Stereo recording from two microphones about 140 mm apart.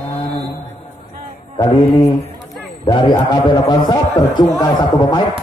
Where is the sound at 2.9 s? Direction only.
35° left (ahead or behind).